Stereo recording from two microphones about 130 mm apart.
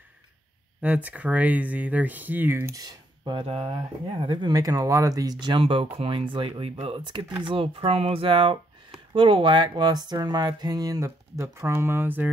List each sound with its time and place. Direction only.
0.8 s speech: 10° right (ahead or behind)
2.8 s speech: 35° right (ahead or behind); by 12.3 s 15° right (ahead or behind)